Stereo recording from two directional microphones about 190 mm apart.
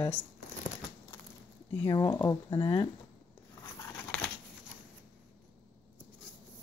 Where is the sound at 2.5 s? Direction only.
30° left (ahead or behind).